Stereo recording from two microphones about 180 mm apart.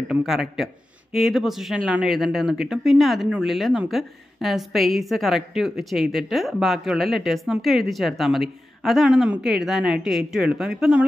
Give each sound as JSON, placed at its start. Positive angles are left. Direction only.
{"t": 0.1, "sound": "speech", "side_deg": 0}